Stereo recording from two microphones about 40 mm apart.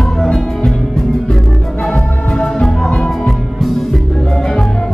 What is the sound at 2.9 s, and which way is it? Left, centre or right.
Music, centre.